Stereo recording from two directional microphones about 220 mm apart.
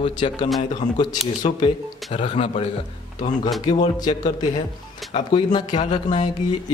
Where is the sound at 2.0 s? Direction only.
25° left (ahead or behind).